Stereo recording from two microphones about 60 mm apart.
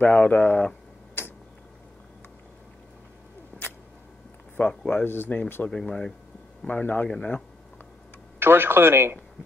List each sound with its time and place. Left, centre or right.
0.0 s speech: left
4.6 s speech: left
5.7 s speech: centre
6.6 s speech: left
8.4 s speech: right